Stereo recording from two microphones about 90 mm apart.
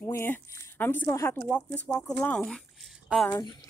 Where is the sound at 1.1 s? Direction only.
35° left (ahead or behind).